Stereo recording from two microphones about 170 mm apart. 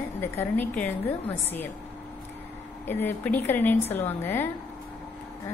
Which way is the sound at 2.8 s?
10° left (ahead or behind).